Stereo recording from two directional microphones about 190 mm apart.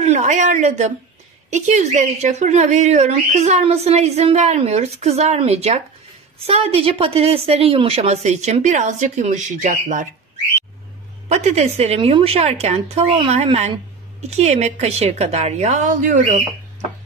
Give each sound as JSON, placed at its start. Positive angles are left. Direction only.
{"t": 0.0, "sound": "a woman's voice", "side_deg": -35}
{"t": 11.2, "sound": "speech", "side_deg": -35}